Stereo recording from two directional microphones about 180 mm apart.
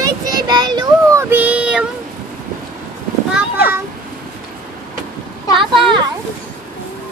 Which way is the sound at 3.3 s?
10° right (ahead or behind).